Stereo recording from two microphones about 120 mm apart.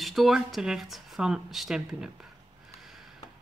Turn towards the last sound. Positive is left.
turn(degrees=0)  # may be behind; listen again after turning